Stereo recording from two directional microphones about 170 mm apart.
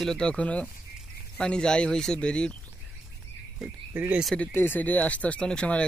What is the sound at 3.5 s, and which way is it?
Speech, 10° right (ahead or behind).